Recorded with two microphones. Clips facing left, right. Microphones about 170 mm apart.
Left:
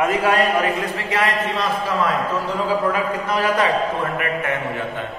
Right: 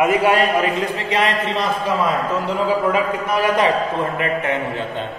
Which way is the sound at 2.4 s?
15° right (ahead or behind).